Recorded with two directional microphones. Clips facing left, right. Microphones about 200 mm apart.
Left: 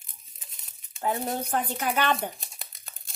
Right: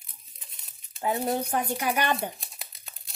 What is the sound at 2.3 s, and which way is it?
Crumpling, centre (ahead or behind).